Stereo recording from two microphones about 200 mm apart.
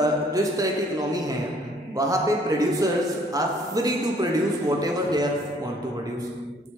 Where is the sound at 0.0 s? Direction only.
15° right (ahead or behind).